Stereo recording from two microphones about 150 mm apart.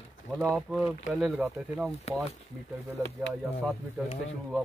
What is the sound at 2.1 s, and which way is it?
Speech, 45° left (ahead or behind).